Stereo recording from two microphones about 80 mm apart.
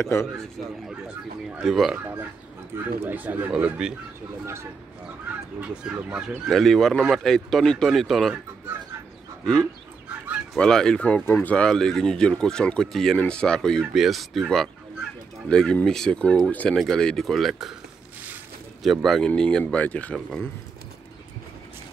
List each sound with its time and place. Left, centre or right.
0.0 s speech: left
1.6 s speech: centre
2.7 s speech: right
3.5 s speech: centre
5.6 s speech: centre
6.4 s speech: centre
9.4 s speech: centre
13.9 s speech: centre
16.7 s speech: centre
19.0 s speech: centre